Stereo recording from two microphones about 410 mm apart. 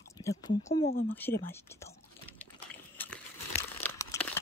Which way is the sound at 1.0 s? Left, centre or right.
Centre.